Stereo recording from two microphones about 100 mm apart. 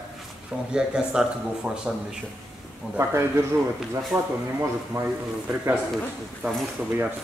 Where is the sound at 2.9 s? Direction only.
25° right (ahead or behind).